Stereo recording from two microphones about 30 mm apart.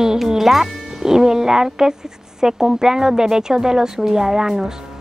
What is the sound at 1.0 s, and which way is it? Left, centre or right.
A child's voice, centre.